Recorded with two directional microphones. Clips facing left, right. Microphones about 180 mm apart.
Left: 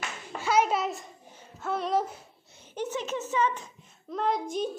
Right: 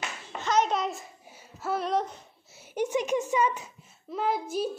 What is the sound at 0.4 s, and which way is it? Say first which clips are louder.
Clapping: left 1 dB; 10° left (ahead or behind).